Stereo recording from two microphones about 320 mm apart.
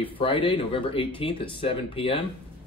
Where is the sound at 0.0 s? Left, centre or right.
Centre.